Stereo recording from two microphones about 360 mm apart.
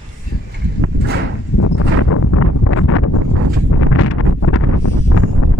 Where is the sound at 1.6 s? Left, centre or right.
Left.